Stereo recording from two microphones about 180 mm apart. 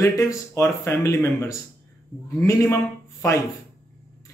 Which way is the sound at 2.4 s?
15° left (ahead or behind).